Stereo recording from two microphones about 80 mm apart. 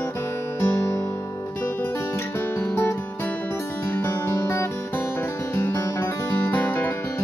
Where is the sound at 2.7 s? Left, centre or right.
Left.